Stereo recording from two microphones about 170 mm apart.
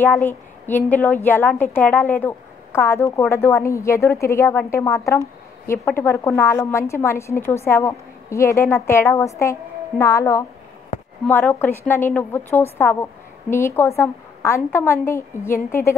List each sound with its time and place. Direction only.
0.0 s a woman's voice: 15° left (ahead or behind)